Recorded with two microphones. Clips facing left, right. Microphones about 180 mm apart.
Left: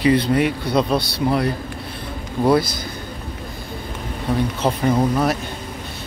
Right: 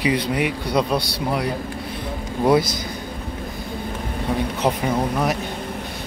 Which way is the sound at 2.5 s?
20° right (ahead or behind).